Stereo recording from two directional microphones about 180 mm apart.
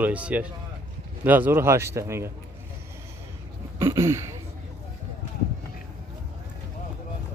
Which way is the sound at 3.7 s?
20° right (ahead or behind).